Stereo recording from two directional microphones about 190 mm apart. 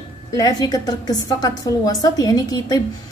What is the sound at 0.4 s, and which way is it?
A woman's voice, 20° left (ahead or behind).